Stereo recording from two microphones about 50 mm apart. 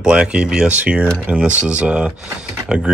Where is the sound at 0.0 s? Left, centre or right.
Centre.